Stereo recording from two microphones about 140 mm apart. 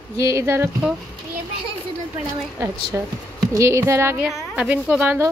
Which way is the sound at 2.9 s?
15° right (ahead or behind).